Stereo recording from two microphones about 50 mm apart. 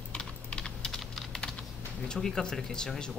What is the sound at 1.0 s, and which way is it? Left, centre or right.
Typing, centre.